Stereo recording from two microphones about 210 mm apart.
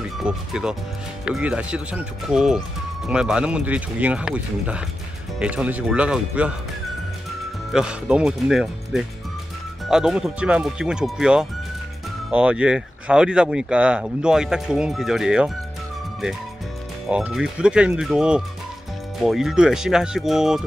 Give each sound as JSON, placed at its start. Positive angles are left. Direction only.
{"t": 0.2, "sound": "speech", "side_deg": -5}
{"t": 7.7, "sound": "speech", "side_deg": -5}
{"t": 17.1, "sound": "speech", "side_deg": -5}